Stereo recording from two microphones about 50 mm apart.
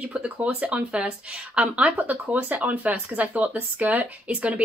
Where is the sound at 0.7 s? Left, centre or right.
Right.